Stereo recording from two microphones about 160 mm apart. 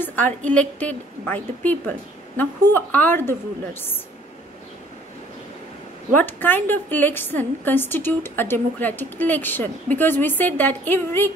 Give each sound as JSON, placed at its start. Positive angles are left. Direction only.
{"t": 0.0, "sound": "a woman's voice", "side_deg": 10}
{"t": 6.1, "sound": "a woman's voice", "side_deg": 10}